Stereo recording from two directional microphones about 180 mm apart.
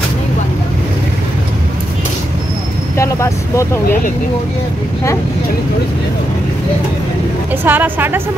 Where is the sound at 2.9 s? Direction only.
15° left (ahead or behind).